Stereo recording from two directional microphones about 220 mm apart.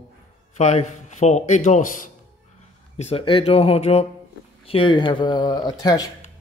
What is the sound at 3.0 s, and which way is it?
Speech, 25° left (ahead or behind).